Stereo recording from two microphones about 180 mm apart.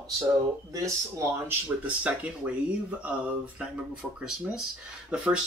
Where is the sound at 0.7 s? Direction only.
15° right (ahead or behind).